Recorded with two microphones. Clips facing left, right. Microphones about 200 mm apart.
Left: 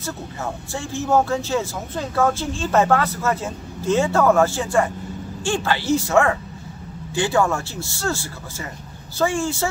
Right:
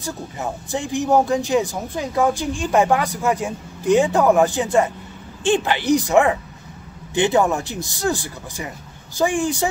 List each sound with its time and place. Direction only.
0.0 s speech: 15° right (ahead or behind)